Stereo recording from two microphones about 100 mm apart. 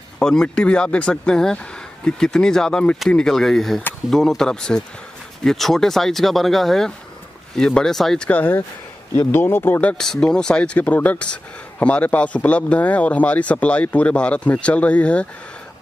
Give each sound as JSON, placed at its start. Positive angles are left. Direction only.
{"t": 0.2, "sound": "speech", "side_deg": 5}
{"t": 8.3, "sound": "speech", "side_deg": 15}